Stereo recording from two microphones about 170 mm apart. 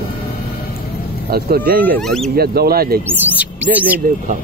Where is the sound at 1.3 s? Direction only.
60° right (ahead or behind).